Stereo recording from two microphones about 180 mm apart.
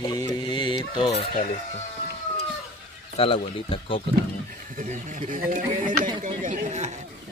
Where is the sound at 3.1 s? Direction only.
30° left (ahead or behind).